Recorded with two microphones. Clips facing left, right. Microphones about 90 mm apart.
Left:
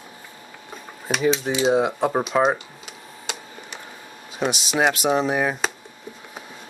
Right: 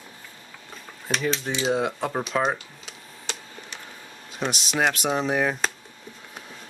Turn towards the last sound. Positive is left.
turn(degrees=5)  # may be behind; listen again after turning